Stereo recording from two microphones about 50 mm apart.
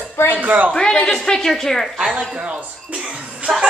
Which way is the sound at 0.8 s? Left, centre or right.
Centre.